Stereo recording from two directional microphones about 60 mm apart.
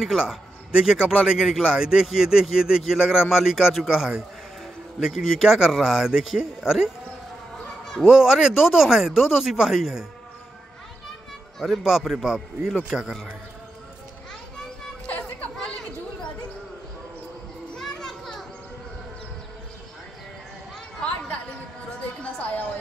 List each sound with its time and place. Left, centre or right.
0.0 s a man's voice: centre
8.0 s a man's voice: centre
11.8 s a man's voice: centre
17.7 s children playing: centre
21.0 s a sound: centre
22.2 s a sound: left